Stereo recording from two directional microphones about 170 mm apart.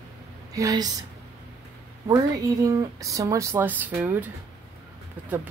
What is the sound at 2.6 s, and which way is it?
Speech, 20° right (ahead or behind).